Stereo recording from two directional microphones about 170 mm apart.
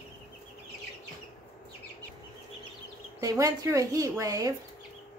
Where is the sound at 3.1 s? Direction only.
20° right (ahead or behind).